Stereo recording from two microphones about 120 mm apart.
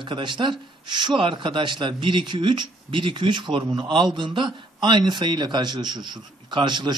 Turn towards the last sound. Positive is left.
turn(degrees=-40)  # may be behind; listen again after turning